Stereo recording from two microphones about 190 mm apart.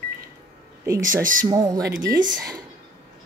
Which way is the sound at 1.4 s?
20° right (ahead or behind).